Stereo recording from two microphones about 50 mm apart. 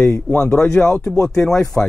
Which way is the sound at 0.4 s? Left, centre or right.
Centre.